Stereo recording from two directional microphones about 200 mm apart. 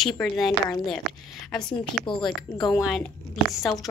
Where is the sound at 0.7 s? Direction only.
20° left (ahead or behind).